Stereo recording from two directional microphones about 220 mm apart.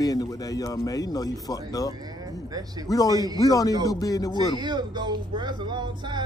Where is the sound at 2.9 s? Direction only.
15° left (ahead or behind).